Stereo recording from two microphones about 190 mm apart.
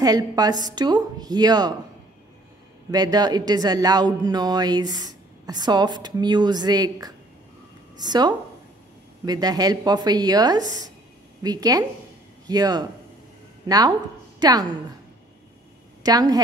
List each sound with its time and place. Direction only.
0.0 s speech: 20° right (ahead or behind)
2.9 s a woman's voice: 20° right (ahead or behind)
16.0 s a woman's voice: 20° right (ahead or behind)